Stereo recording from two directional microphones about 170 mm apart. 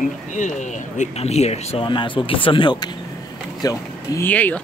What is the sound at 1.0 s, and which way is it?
Speech, 40° left (ahead or behind).